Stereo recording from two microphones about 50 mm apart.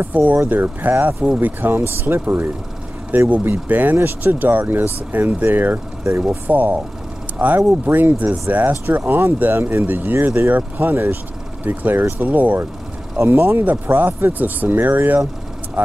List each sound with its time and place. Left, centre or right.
0.0 s speech: right
8.8 s speech: right
11.6 s speech: right
13.3 s speech: right